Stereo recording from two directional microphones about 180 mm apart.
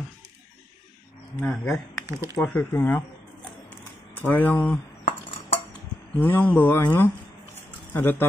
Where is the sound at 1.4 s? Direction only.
5° left (ahead or behind).